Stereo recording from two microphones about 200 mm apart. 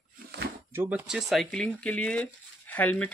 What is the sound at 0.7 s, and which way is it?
Speech, 10° right (ahead or behind).